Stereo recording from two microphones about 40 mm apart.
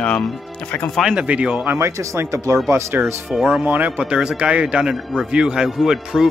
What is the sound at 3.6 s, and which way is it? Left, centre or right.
Speech, right.